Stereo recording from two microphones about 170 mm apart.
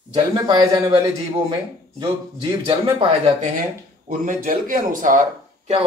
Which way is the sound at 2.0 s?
30° right (ahead or behind).